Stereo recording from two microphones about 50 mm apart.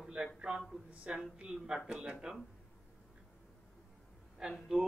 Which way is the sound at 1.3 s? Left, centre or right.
Centre.